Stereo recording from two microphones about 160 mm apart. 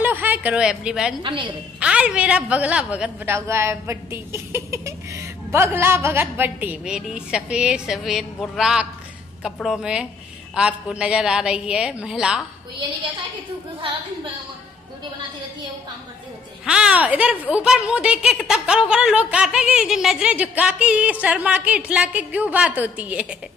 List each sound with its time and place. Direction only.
0.0 s a sound: 10° right (ahead or behind)
1.2 s a woman's voice: 30° right (ahead or behind)
1.8 s a woman's voice: 5° right (ahead or behind)
16.6 s a woman's voice: 5° right (ahead or behind)